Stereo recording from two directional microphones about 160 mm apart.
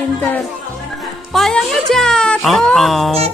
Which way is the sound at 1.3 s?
Centre (ahead or behind).